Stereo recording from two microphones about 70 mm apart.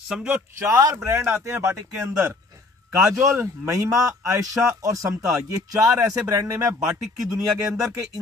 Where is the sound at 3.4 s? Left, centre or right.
Right.